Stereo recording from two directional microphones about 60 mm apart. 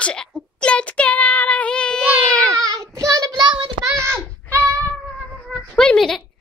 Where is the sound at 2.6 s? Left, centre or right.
Right.